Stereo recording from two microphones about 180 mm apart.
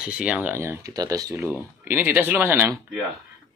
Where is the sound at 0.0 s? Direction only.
5° right (ahead or behind).